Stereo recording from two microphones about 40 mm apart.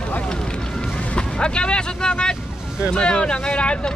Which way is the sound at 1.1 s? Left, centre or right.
Left.